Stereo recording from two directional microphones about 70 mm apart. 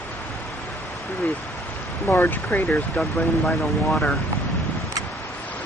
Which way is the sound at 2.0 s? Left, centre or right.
Left.